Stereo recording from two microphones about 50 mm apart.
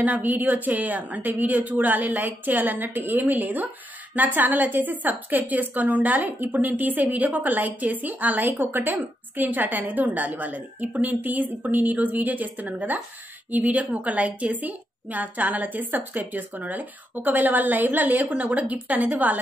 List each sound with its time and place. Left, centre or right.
0.0 s a woman's voice: right